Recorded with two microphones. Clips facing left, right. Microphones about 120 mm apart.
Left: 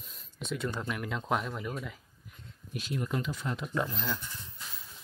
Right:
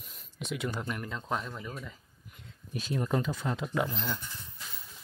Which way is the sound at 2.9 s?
35° right (ahead or behind).